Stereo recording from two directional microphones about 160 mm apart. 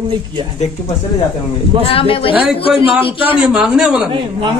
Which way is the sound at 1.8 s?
35° left (ahead or behind).